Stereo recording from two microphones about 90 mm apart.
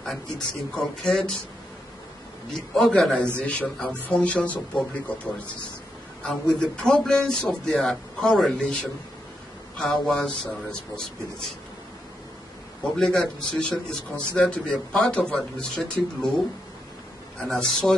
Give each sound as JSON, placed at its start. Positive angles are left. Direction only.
{"t": 0.0, "sound": "speech", "side_deg": 5}
{"t": 2.5, "sound": "a man's voice", "side_deg": 5}
{"t": 12.9, "sound": "a man's voice", "side_deg": 5}
{"t": 17.4, "sound": "a man's voice", "side_deg": 5}